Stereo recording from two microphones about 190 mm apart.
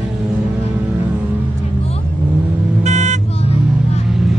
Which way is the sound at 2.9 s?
40° right (ahead or behind).